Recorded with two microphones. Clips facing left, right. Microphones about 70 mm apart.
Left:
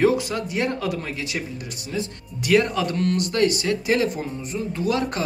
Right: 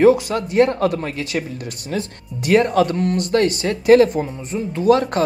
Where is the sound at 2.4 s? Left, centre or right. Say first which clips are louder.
Right 5 dB; right.